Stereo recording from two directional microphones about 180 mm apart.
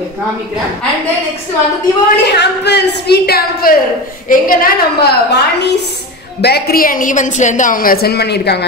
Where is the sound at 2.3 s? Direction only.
65° left (ahead or behind).